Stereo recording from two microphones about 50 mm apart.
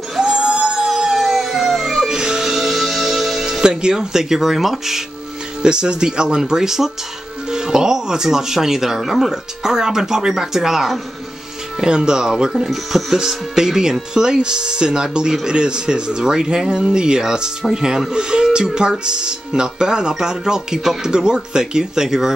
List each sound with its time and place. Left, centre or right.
0.2 s howl: centre
5.6 s speech: centre
11.8 s speech: centre